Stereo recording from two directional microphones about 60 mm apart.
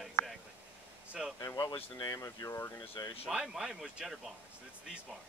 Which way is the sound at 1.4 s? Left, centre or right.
Left.